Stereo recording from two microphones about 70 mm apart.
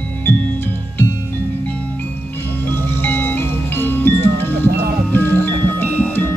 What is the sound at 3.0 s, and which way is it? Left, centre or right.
Music, left.